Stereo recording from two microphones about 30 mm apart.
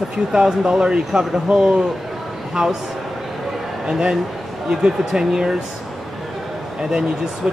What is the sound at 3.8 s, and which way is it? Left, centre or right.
Speech, right.